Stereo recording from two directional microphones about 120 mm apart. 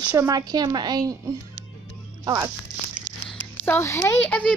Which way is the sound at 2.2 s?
30° right (ahead or behind).